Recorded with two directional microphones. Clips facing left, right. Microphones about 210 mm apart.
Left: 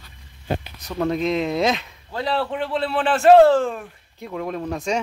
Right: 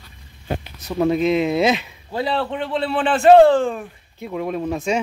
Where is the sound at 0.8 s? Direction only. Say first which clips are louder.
Right 5 dB; 10° right (ahead or behind).